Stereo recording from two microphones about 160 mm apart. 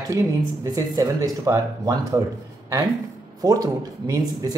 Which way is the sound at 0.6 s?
20° right (ahead or behind).